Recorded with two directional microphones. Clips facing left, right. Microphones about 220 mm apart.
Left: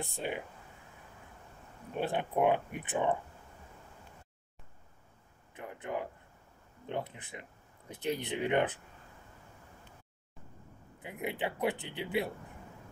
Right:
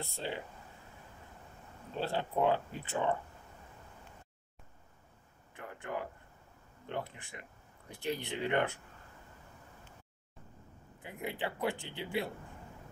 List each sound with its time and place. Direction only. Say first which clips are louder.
0.0 s speech: left 2 dB; 15° left (ahead or behind)
2.0 s speech: left 2 dB; 15° left (ahead or behind)
5.5 s speech: left 2 dB; 20° left (ahead or behind)
11.0 s speech: left 2 dB; 20° left (ahead or behind)